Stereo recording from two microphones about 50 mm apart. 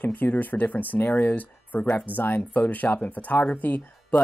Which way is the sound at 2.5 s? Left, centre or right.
Left.